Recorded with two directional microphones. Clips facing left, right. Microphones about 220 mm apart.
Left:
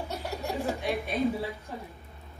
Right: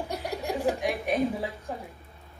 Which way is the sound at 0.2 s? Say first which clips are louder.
Right 5 dB; 15° right (ahead or behind).